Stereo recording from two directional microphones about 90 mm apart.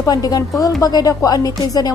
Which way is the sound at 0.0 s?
45° left (ahead or behind).